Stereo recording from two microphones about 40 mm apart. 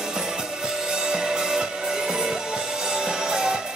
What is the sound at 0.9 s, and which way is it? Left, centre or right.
Music, centre.